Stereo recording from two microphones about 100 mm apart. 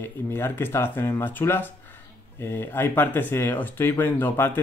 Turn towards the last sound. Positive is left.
turn(degrees=20)  # may be behind; listen again after turning